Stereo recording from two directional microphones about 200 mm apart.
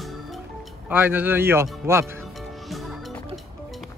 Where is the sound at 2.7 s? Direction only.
Centre (ahead or behind).